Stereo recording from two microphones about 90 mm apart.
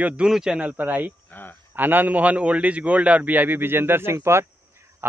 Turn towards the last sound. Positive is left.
turn(degrees=-25)  # may be behind; listen again after turning